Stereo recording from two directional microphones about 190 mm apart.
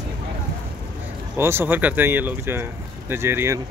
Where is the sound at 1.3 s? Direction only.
10° right (ahead or behind).